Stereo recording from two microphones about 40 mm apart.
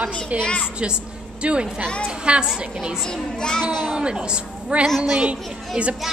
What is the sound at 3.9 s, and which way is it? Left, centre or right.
Speech, right.